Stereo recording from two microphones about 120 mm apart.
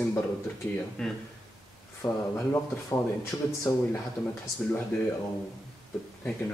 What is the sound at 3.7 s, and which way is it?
Speech, 20° left (ahead or behind).